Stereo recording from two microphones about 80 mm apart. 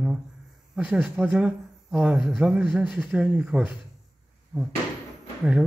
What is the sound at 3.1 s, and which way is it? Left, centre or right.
A man's voice, centre.